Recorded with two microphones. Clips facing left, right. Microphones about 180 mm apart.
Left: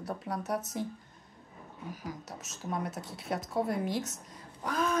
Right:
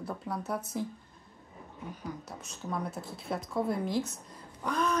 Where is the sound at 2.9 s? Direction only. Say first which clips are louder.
Even; 75° left (ahead or behind).